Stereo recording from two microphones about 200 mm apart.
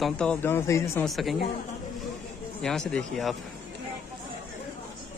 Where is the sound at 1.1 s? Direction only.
Centre (ahead or behind).